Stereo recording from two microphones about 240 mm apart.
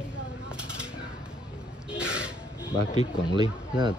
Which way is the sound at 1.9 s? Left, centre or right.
Centre.